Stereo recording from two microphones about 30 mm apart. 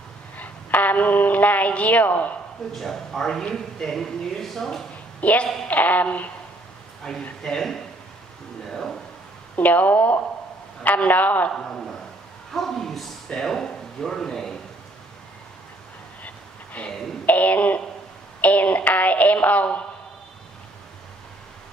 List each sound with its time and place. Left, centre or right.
0.4 s speech: left
2.7 s speech: centre
5.2 s speech: left
5.7 s speech: left
7.1 s speech: centre
8.6 s a sound: centre
9.6 s a man's voice: left
11.5 s a man's voice: left
12.5 s a sound: centre
13.3 s speech: centre
16.7 s speech: left